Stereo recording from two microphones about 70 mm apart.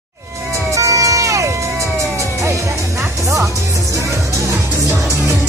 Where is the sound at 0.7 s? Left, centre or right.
Right.